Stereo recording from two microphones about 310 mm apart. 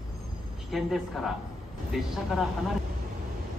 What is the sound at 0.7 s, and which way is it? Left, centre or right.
Speech, centre.